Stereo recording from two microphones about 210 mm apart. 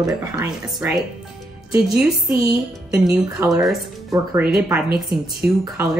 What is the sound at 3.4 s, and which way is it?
Speech, centre (ahead or behind).